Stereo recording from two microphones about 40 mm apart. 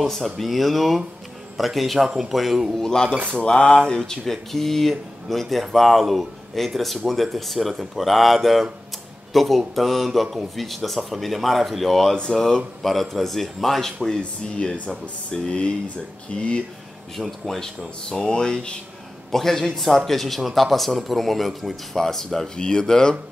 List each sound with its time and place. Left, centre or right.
0.1 s a man's voice: centre
2.7 s speech: centre
14.7 s speech: centre
16.3 s speech: left
17.2 s speech: centre
19.3 s speech: centre
22.6 s speech: left